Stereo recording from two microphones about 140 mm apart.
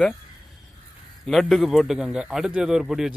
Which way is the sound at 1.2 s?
Centre (ahead or behind).